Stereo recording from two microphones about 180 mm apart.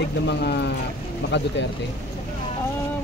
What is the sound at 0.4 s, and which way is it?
Speech, 70° left (ahead or behind).